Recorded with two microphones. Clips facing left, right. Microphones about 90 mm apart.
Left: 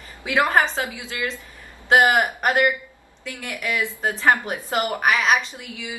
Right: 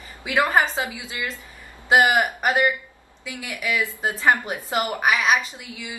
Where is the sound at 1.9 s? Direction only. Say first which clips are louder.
Left 1 dB; centre (ahead or behind).